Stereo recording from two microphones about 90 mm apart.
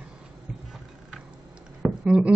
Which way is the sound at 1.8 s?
10° right (ahead or behind).